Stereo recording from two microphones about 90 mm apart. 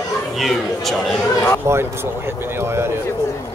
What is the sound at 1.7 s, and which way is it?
Speech, 25° right (ahead or behind).